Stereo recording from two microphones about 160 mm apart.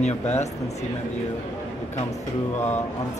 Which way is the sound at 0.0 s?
45° left (ahead or behind).